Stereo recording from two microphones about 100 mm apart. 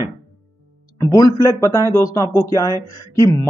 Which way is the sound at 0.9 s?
35° left (ahead or behind).